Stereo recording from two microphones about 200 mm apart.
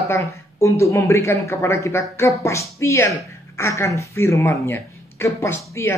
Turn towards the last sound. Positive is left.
turn(degrees=15)  # may be behind; listen again after turning